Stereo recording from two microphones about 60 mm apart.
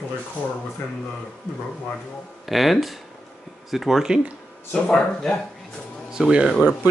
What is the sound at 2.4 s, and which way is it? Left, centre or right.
Speech, centre.